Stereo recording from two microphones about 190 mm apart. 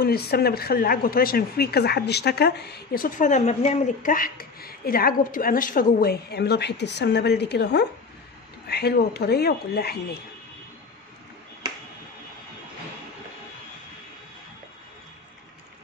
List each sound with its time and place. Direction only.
0.0 s speech: 55° left (ahead or behind)